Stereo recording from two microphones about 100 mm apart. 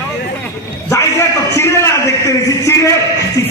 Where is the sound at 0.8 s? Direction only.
30° left (ahead or behind).